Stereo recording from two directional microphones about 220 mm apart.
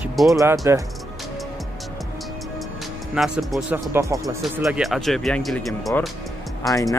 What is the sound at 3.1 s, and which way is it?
Speech, centre (ahead or behind).